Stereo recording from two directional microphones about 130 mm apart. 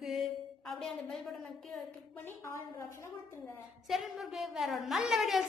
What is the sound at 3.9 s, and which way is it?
A woman's voice, centre (ahead or behind).